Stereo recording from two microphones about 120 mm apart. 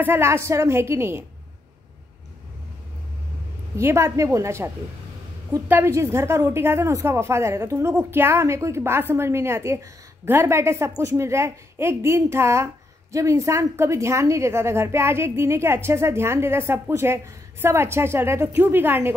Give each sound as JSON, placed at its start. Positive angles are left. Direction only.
{"t": 0.0, "sound": "a woman's voice", "side_deg": -20}
{"t": 3.7, "sound": "a woman's voice", "side_deg": -25}
{"t": 5.7, "sound": "a woman's voice", "side_deg": -20}